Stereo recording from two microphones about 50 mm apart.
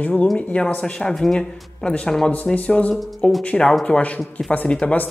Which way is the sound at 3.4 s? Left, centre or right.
Centre.